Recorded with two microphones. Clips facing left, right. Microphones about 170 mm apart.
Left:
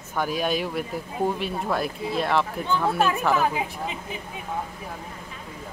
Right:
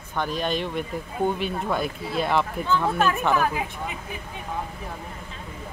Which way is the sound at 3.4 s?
20° left (ahead or behind).